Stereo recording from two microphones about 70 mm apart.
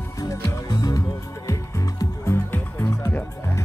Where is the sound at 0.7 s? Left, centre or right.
Left.